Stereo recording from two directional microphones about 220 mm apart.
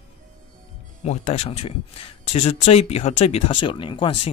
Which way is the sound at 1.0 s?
30° left (ahead or behind).